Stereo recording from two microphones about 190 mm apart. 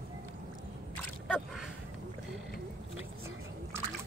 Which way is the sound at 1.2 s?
Centre (ahead or behind).